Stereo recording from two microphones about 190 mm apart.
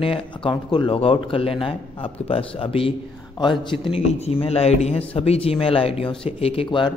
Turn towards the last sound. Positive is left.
turn(degrees=25)  # may be behind; listen again after turning